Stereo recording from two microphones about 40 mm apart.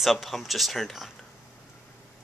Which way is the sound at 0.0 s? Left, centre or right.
Centre.